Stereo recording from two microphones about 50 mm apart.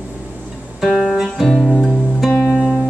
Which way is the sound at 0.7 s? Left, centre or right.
Centre.